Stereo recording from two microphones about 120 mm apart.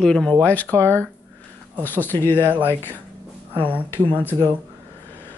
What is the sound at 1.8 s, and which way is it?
Speech, 15° left (ahead or behind).